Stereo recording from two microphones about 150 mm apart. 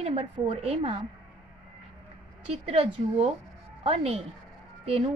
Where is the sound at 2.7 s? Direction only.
40° right (ahead or behind).